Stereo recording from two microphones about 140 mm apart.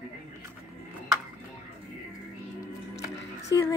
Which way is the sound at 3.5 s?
25° left (ahead or behind).